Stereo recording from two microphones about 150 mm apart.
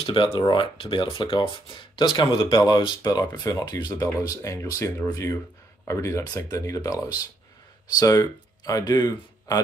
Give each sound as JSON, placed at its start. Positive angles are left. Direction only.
{"t": 0.0, "sound": "speech", "side_deg": 35}